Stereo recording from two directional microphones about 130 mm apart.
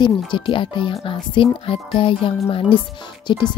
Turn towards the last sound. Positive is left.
turn(degrees=35)  # may be behind; listen again after turning